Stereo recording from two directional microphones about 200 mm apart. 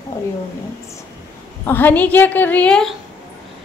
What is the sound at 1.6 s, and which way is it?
A woman's voice, 10° left (ahead or behind).